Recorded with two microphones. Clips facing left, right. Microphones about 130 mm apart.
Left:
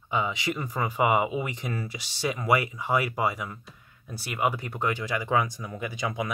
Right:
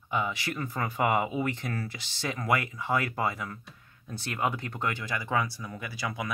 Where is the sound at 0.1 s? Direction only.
15° left (ahead or behind).